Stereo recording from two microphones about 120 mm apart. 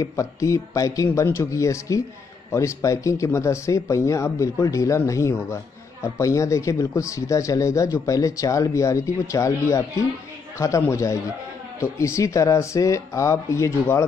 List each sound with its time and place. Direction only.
0.0 s speech: 25° left (ahead or behind)